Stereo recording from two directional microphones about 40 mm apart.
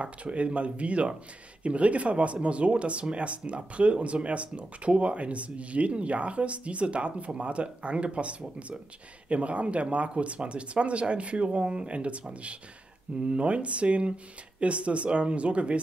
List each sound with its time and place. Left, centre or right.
0.0 s speech: right